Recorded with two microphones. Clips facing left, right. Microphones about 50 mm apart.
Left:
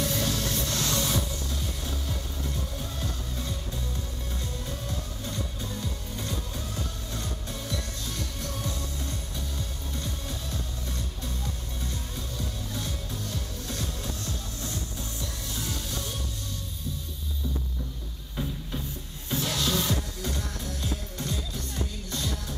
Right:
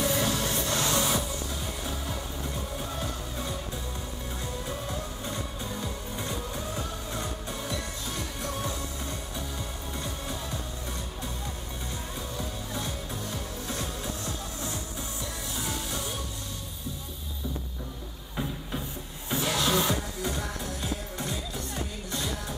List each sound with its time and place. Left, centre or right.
0.0 s music: centre
4.6 s music: centre
12.4 s music: centre
18.3 s music: right